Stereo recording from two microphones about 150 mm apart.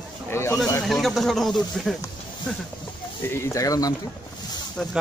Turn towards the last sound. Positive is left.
turn(degrees=25)  # may be behind; listen again after turning